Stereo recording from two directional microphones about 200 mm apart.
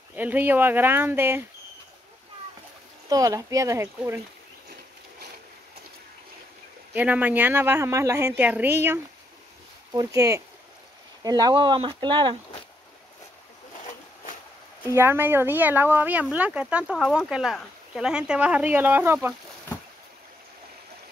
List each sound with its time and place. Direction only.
0.1 s speech: 10° right (ahead or behind)
3.1 s speech: 15° right (ahead or behind)
6.9 s speech: 10° right (ahead or behind); by 12.4 s 25° right (ahead or behind)
14.9 s speech: 10° right (ahead or behind)